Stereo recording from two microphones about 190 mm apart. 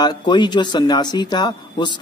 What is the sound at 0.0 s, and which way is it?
Speech, 25° left (ahead or behind).